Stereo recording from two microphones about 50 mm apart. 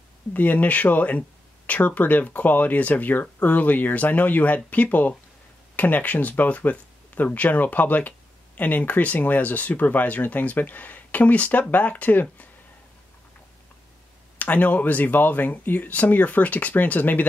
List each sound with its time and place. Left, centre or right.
0.3 s speech: left
14.4 s speech: left